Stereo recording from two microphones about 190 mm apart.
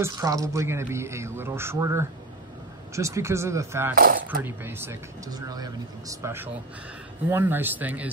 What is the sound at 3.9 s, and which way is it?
Speech, 50° right (ahead or behind).